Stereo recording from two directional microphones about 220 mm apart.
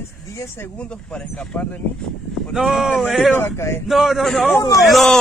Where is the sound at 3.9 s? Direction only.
Centre (ahead or behind).